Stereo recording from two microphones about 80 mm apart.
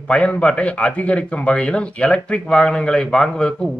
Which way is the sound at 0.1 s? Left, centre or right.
Centre.